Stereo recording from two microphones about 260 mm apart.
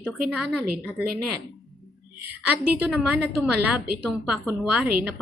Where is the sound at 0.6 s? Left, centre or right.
Right.